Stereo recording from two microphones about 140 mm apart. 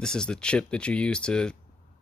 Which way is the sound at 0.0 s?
5° left (ahead or behind).